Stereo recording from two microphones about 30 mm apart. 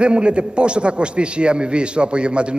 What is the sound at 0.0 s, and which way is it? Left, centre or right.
A man's voice, right.